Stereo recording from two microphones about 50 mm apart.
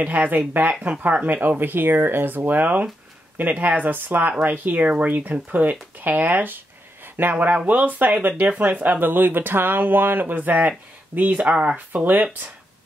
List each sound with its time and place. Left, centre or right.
0.0 s speech: right